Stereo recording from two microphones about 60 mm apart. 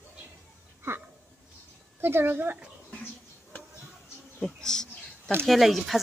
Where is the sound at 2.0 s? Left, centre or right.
Right.